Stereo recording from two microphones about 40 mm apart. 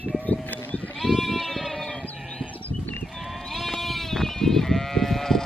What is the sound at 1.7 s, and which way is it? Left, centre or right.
Sheep, left.